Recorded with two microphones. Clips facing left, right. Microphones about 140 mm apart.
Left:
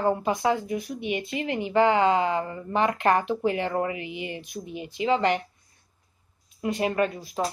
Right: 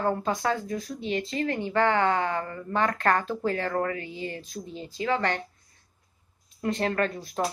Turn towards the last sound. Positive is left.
turn(degrees=10)  # may be behind; listen again after turning